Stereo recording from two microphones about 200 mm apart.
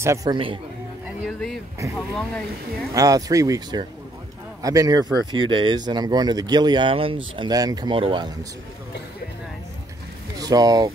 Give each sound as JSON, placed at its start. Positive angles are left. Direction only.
{"t": 0.0, "sound": "speech", "side_deg": -15}
{"t": 1.2, "sound": "speech", "side_deg": 0}
{"t": 2.9, "sound": "speech", "side_deg": -15}
{"t": 10.3, "sound": "speech", "side_deg": -20}